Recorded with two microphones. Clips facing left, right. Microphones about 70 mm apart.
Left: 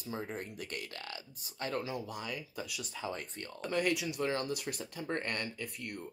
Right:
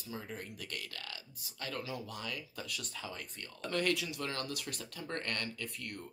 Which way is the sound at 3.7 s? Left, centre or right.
Centre.